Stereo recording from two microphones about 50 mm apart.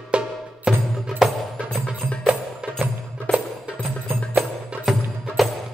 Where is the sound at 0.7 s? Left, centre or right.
Centre.